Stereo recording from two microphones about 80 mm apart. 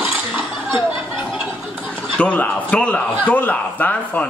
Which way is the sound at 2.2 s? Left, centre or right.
Centre.